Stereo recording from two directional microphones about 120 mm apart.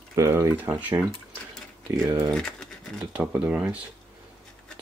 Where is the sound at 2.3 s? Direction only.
5° left (ahead or behind).